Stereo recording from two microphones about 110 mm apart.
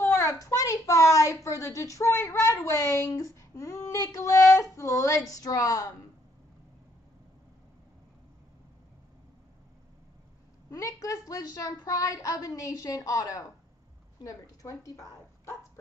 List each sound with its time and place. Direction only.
0.0 s a woman's voice: 25° left (ahead or behind)
10.7 s a woman's voice: 30° left (ahead or behind)